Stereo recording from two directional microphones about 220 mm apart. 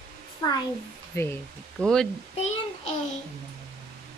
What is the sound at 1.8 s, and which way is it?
Speech, centre (ahead or behind).